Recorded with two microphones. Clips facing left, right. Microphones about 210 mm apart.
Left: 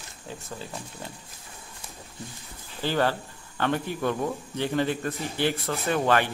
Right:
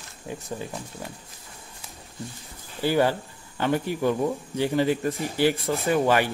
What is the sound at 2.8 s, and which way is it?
Speech, 10° right (ahead or behind).